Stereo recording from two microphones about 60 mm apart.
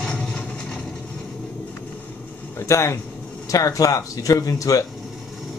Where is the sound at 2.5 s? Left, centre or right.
Left.